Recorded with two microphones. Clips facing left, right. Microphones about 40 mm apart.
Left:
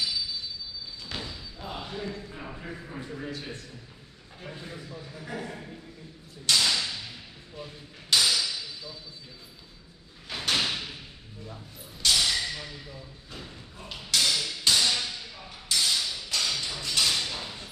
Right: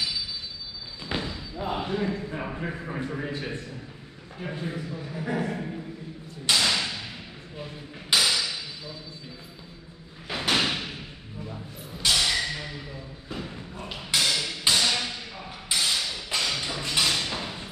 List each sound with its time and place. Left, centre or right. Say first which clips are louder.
1.0 s a man's voice: right 8 dB; right
6.4 s whip: right 2 dB; centre
7.5 s a sound: right 3 dB; centre
10.2 s door: right 3 dB; centre
12.0 s a sound: right 1 dB; centre
13.3 s thump: right 9 dB; right